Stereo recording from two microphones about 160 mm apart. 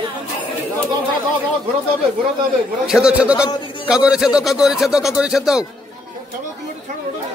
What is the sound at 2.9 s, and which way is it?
A man's voice, 5° right (ahead or behind).